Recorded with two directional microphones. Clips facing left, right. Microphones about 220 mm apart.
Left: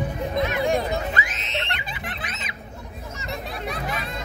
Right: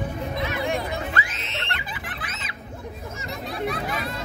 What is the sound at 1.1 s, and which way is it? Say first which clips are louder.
Music: left 2 dB; 20° left (ahead or behind).